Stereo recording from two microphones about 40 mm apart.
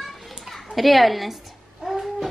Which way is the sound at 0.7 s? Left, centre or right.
Centre.